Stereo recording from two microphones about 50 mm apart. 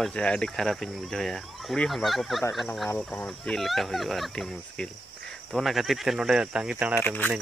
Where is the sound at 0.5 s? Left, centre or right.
Centre.